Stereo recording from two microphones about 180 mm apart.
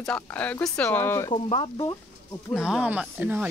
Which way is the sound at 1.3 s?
30° left (ahead or behind).